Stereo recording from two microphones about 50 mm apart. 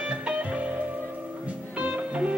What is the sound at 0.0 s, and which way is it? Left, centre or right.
Music, right.